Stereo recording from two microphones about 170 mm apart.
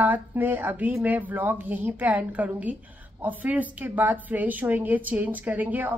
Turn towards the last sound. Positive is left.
turn(degrees=-10)  # may be behind; listen again after turning